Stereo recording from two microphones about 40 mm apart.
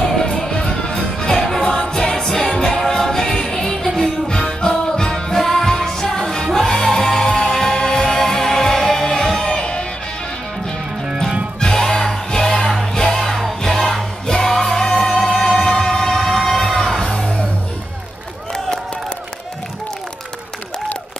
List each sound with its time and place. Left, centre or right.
0.0 s music: centre
11.6 s music: centre